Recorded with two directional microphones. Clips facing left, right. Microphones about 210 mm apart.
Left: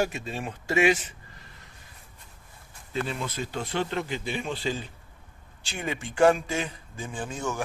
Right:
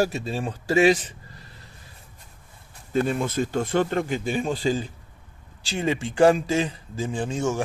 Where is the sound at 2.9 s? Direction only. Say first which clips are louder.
Right 8 dB; 50° right (ahead or behind).